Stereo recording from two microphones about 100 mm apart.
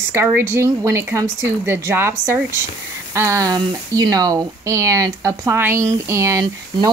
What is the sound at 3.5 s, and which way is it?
Speech, 40° right (ahead or behind).